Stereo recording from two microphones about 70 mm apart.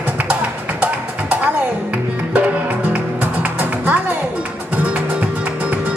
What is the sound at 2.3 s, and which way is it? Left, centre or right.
Music, centre.